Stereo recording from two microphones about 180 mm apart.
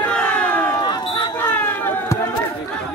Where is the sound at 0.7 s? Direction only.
25° left (ahead or behind).